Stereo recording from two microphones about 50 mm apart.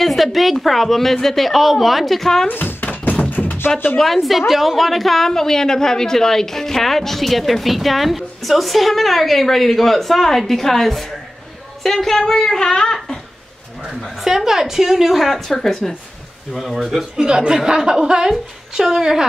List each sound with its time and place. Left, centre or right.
0.0 s a woman's voice: centre
2.4 s a sound: left
2.9 s thunk: left
4.0 s a woman's voice: centre
14.2 s a woman's voice: centre
17.2 s speech: centre